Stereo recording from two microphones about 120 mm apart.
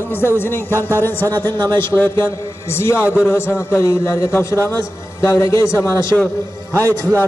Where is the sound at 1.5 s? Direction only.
35° right (ahead or behind).